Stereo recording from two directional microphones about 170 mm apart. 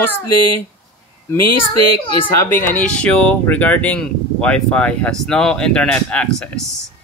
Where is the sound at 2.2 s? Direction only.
10° left (ahead or behind).